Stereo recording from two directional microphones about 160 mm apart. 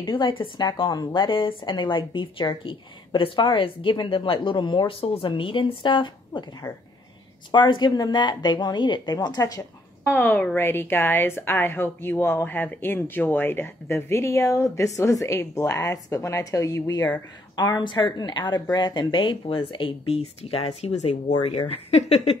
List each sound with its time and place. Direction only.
0.0 s a woman's voice: 30° left (ahead or behind)
10.0 s a woman's voice: 10° left (ahead or behind); by 22.4 s 40° left (ahead or behind)